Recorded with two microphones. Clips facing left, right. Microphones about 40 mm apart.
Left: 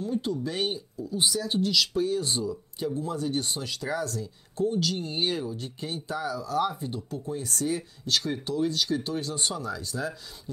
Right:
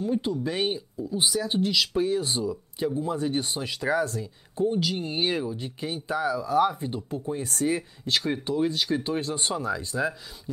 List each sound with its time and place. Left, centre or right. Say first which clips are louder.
0.0 s speech: right 2 dB; right